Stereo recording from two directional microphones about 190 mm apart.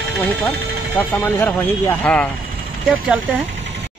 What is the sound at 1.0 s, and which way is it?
A man's voice, 10° left (ahead or behind).